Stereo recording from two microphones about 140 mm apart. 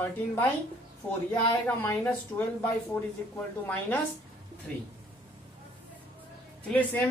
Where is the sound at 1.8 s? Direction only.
15° left (ahead or behind).